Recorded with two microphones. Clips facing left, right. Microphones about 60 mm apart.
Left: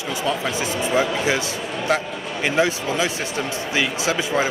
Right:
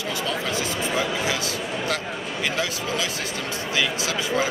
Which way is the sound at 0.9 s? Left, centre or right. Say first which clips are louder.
Left 6 dB; left.